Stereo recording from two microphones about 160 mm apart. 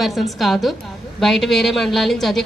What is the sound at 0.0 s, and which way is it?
A man's voice, centre (ahead or behind).